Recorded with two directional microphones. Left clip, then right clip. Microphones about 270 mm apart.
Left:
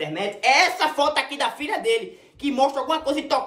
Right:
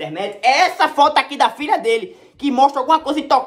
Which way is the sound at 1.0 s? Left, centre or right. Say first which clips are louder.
Right 8 dB; right.